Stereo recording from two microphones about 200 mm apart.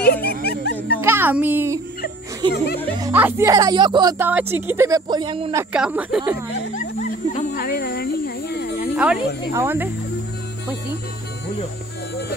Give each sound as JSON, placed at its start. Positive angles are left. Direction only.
{"t": 0.0, "sound": "music", "side_deg": 50}
{"t": 1.0, "sound": "a child's voice", "side_deg": -10}
{"t": 2.4, "sound": "speech", "side_deg": -25}
{"t": 3.0, "sound": "speech", "side_deg": -10}
{"t": 4.2, "sound": "speech", "side_deg": -10}
{"t": 5.6, "sound": "speech", "side_deg": -5}
{"t": 6.7, "sound": "a sound", "side_deg": 35}
{"t": 7.6, "sound": "a sound", "side_deg": 50}
{"t": 8.9, "sound": "speech", "side_deg": -5}